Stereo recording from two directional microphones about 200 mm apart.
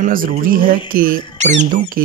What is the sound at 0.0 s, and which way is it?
Speech, 45° right (ahead or behind).